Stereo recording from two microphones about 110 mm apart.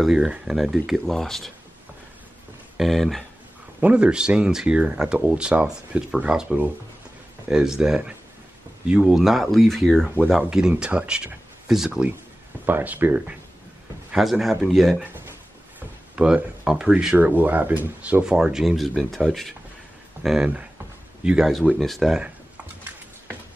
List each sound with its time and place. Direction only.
0.0 s speech: 5° right (ahead or behind)
2.8 s speech: centre (ahead or behind)
3.8 s speech: 10° right (ahead or behind)
12.6 s speech: 15° right (ahead or behind)
14.1 s speech: centre (ahead or behind)
16.2 s speech: 10° right (ahead or behind)